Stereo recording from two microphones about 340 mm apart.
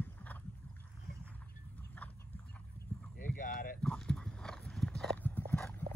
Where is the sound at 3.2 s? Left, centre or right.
Left.